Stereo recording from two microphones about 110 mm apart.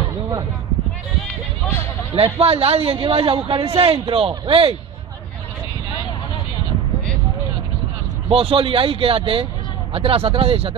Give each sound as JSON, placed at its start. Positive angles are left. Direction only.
{"t": 2.1, "sound": "a man's voice", "side_deg": -60}
{"t": 8.3, "sound": "a man's voice", "side_deg": -60}